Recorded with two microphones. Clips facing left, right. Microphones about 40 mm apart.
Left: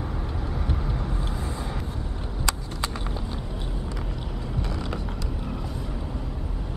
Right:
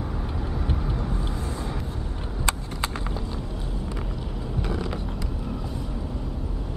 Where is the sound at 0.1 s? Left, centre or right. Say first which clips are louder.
Right 1 dB; centre.